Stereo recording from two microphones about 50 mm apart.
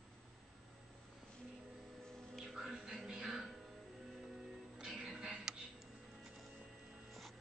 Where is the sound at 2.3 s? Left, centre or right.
Centre.